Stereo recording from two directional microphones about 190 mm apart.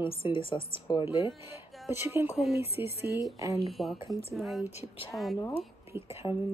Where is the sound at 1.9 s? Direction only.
10° right (ahead or behind).